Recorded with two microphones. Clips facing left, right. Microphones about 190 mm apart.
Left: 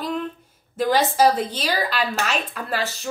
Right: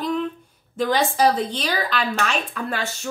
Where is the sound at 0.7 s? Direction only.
5° left (ahead or behind).